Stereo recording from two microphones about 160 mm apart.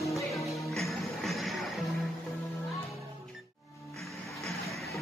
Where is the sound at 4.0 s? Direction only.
Centre (ahead or behind).